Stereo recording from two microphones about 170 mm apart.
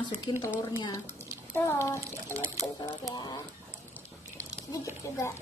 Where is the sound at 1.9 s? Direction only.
20° right (ahead or behind).